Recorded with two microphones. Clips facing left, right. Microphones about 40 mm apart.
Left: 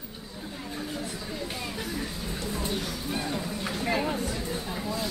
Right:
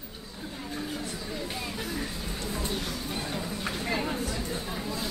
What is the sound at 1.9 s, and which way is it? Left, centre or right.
Music, centre.